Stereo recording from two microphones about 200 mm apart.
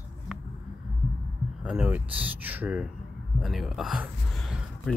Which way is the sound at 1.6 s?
5° right (ahead or behind).